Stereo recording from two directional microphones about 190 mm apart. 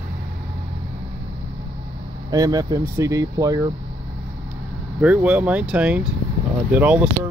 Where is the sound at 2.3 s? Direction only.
20° right (ahead or behind).